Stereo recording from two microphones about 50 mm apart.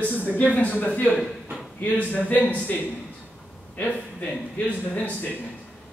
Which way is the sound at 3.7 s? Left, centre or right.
Left.